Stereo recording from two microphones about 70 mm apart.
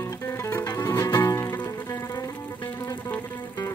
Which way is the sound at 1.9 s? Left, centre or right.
Left.